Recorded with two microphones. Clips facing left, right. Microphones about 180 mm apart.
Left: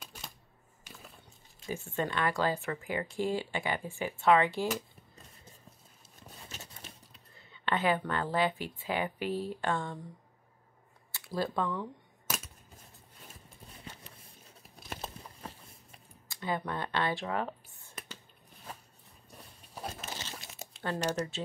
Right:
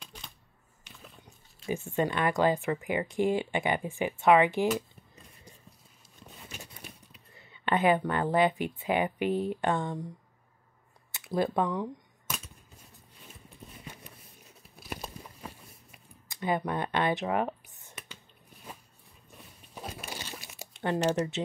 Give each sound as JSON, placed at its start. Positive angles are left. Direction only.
{"t": 1.7, "sound": "speech", "side_deg": -15}
{"t": 6.5, "sound": "a sound", "side_deg": -15}
{"t": 7.6, "sound": "speech", "side_deg": -15}
{"t": 9.2, "sound": "speech", "side_deg": -55}
{"t": 9.6, "sound": "speech", "side_deg": -20}
{"t": 11.1, "sound": "speech", "side_deg": -20}
{"t": 15.4, "sound": "a sound", "side_deg": -15}
{"t": 19.7, "sound": "a sound", "side_deg": -10}
{"t": 20.8, "sound": "speech", "side_deg": -20}